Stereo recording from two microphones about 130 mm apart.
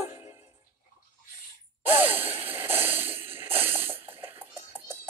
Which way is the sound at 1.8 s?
15° right (ahead or behind).